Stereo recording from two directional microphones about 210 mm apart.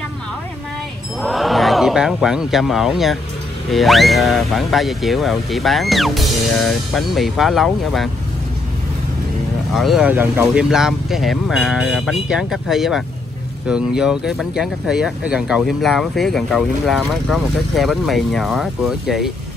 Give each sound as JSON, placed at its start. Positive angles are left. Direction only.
{"t": 1.2, "sound": "speech", "side_deg": 0}
{"t": 9.8, "sound": "speech", "side_deg": 0}